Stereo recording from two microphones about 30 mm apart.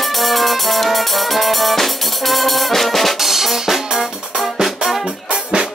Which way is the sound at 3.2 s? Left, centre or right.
Centre.